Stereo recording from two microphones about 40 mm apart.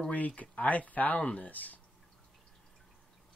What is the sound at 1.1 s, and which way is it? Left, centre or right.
Speech, left.